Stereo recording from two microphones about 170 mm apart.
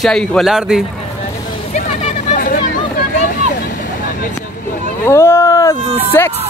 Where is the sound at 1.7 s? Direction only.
45° left (ahead or behind).